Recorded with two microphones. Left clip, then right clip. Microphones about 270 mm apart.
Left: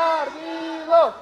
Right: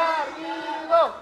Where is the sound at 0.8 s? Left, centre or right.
Left.